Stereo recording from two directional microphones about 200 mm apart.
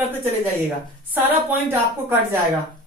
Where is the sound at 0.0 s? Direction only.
10° right (ahead or behind).